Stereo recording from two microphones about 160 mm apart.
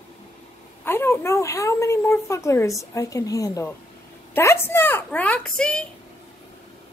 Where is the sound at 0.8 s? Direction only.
15° left (ahead or behind).